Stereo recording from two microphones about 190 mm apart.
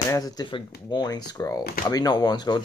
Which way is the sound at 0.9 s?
20° left (ahead or behind).